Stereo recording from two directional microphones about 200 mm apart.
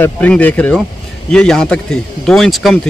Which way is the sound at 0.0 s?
10° left (ahead or behind).